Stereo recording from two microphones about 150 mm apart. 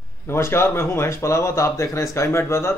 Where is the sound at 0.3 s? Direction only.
15° left (ahead or behind).